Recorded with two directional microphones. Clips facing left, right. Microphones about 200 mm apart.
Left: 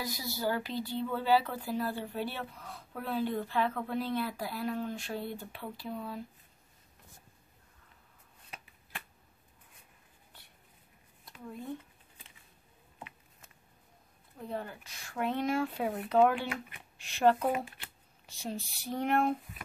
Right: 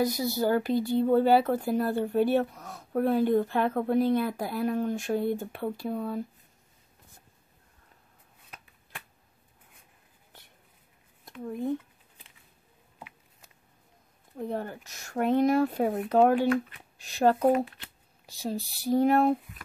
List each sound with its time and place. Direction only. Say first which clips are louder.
0.0 s speech: right 9 dB; 45° right (ahead or behind)
11.2 s speech: right 10 dB; 45° right (ahead or behind)
14.3 s speech: right 6 dB; 45° right (ahead or behind)